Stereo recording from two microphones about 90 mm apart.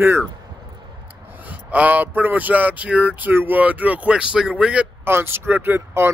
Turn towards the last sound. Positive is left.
turn(degrees=-25)  # may be behind; listen again after turning